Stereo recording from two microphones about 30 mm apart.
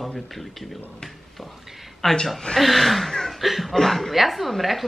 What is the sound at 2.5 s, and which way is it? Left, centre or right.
Speech, centre.